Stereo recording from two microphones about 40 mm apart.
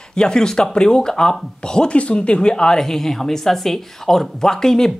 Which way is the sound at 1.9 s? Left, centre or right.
Left.